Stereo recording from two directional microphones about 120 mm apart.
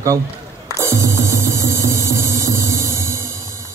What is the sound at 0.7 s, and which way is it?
Music, 25° right (ahead or behind).